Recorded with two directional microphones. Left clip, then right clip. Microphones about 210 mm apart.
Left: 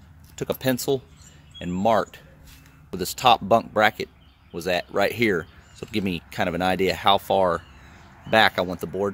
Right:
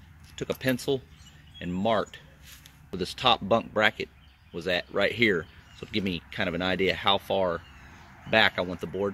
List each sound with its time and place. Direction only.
0.4 s speech: 10° left (ahead or behind)